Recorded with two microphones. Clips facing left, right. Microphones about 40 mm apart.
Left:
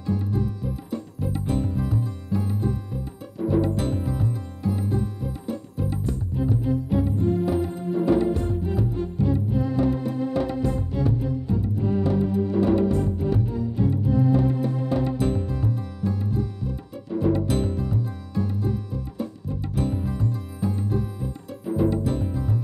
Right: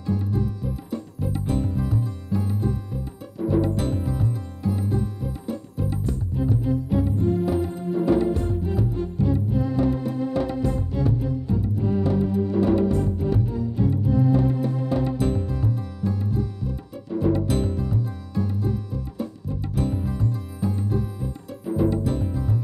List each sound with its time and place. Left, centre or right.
0.0 s music: left